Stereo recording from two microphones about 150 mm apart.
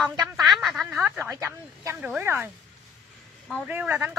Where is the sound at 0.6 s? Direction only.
Centre (ahead or behind).